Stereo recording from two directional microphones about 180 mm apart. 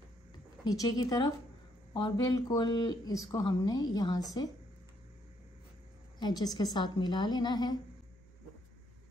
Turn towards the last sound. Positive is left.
turn(degrees=25)  # may be behind; listen again after turning